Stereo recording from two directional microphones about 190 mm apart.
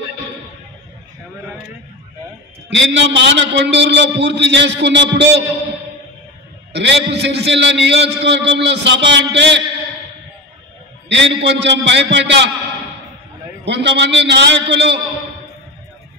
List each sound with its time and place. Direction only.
2.7 s a man's voice: 70° right (ahead or behind)
6.7 s a man's voice: 65° right (ahead or behind)
11.1 s a man's voice: 70° right (ahead or behind)
13.7 s a man's voice: 65° right (ahead or behind)